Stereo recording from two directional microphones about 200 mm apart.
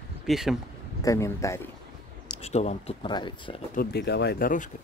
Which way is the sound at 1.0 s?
15° left (ahead or behind).